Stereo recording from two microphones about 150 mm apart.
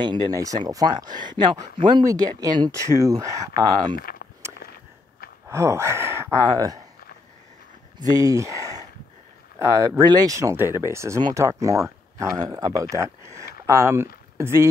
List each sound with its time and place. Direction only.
0.0 s speech: 25° right (ahead or behind)
4.0 s a sound: 90° left
5.5 s speech: 20° right (ahead or behind)
8.0 s speech: 25° right (ahead or behind)